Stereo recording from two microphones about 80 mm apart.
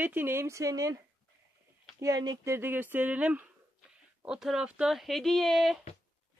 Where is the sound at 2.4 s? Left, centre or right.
Right.